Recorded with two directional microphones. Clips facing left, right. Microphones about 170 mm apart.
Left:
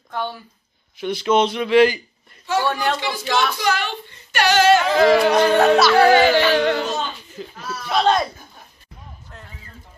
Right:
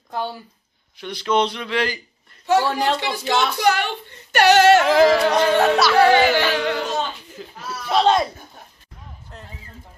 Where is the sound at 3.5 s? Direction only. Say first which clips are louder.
Right 3 dB; 60° right (ahead or behind).